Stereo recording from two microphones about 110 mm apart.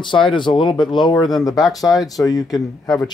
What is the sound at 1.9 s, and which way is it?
Speech, 35° left (ahead or behind).